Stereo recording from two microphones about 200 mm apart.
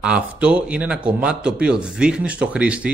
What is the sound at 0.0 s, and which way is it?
Speech, 5° right (ahead or behind).